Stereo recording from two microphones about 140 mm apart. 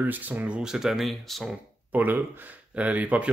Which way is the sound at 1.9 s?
15° right (ahead or behind).